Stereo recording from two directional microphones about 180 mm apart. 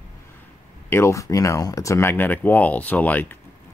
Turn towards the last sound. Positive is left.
turn(degrees=10)  # may be behind; listen again after turning